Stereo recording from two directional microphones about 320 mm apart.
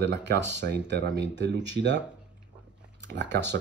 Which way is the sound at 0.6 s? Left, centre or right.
Right.